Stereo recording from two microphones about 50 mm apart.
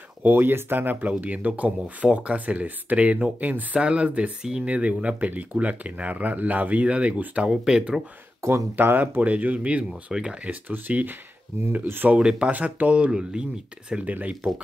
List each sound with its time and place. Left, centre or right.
0.2 s speech: right; by 4.6 s centre
4.6 s speech: right
8.4 s speech: right
8.7 s speech: right; by 10.5 s centre
10.5 s speech: right
12.2 s speech: centre
12.4 s speech: right
14.0 s speech: right